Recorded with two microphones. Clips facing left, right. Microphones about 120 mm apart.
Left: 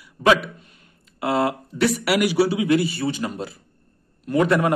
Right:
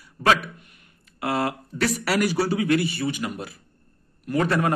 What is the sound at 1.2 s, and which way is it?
Speech, 25° left (ahead or behind).